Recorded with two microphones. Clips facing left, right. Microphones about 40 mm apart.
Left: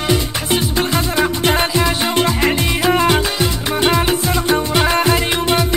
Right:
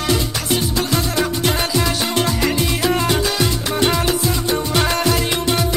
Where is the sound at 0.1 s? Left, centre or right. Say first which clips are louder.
Left 2 dB; left.